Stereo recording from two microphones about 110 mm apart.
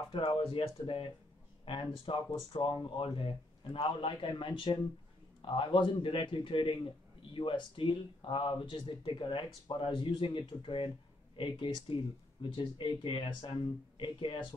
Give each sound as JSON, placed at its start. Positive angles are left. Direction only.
{"t": 0.1, "sound": "speech", "side_deg": 50}